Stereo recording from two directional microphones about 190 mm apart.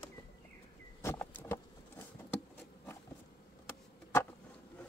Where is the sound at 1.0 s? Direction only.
15° left (ahead or behind).